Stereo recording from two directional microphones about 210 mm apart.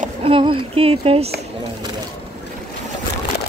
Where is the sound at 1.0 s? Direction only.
25° right (ahead or behind).